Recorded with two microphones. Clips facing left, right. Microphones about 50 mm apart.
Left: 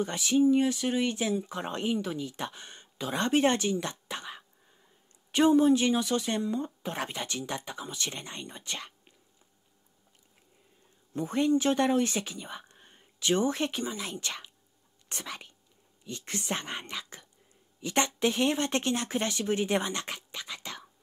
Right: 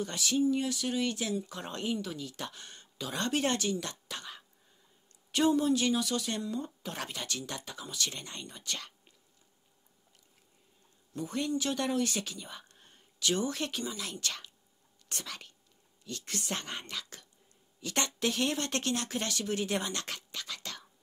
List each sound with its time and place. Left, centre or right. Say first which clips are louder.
0.0 s speech: left 5 dB; left
11.1 s speech: left 7 dB; left